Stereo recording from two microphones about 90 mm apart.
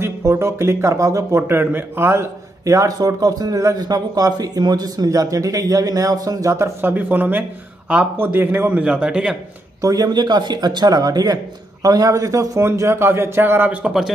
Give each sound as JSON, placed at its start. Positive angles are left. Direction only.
{"t": 0.0, "sound": "a man's voice", "side_deg": -30}
{"t": 9.8, "sound": "speech", "side_deg": -40}
{"t": 13.7, "sound": "a man's voice", "side_deg": -5}